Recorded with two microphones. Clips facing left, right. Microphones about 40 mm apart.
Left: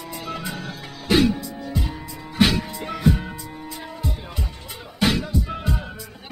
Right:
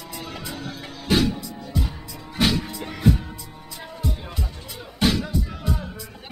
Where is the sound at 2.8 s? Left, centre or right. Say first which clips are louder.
Left 1 dB; centre.